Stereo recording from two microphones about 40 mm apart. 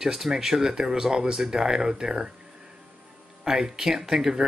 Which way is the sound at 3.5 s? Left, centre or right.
Centre.